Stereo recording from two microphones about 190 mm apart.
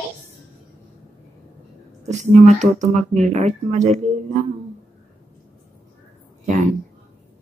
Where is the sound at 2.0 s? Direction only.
40° right (ahead or behind).